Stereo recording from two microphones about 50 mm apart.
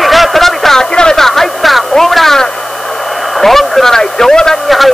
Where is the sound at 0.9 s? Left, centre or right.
Centre.